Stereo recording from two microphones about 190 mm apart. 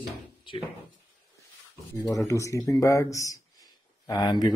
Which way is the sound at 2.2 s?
15° left (ahead or behind).